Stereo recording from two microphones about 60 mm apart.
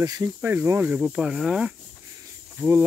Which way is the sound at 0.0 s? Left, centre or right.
Right.